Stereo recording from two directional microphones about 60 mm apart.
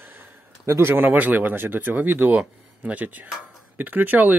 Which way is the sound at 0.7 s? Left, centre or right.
Right.